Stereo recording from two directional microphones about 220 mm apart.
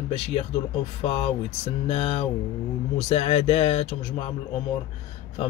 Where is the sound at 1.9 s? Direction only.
25° left (ahead or behind).